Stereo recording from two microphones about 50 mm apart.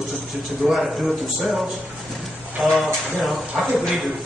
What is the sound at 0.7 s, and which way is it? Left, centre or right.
Speech, centre.